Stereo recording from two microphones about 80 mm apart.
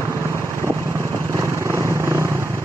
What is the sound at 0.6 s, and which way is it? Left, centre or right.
Vehicle, right.